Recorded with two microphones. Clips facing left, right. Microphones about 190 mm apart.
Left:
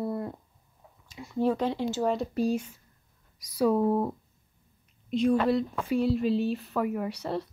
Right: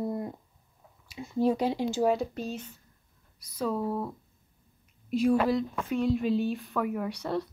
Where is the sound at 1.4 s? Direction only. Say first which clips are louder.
Even; 15° right (ahead or behind).